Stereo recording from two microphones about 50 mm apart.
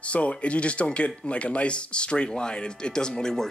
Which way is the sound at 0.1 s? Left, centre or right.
Left.